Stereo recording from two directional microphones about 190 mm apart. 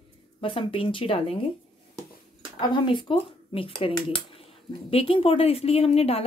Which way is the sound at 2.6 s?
25° left (ahead or behind).